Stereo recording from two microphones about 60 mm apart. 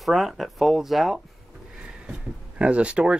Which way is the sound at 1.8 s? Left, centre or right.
Centre.